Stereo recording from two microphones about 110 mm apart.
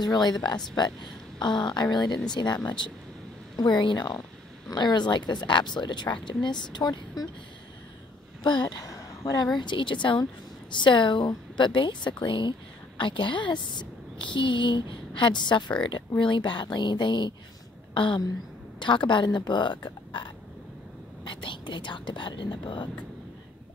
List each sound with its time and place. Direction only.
0.0 s speech: 40° left (ahead or behind)
8.5 s speech: 40° left (ahead or behind)
9.6 s a woman's voice: 45° left (ahead or behind)